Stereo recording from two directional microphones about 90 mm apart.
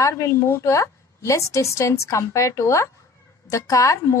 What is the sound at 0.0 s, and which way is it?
A woman's voice, 35° left (ahead or behind).